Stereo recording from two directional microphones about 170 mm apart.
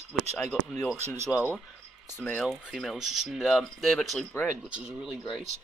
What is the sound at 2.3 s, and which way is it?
Speech, centre (ahead or behind).